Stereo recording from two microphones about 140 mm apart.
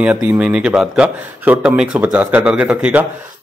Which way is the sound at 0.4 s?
5° right (ahead or behind).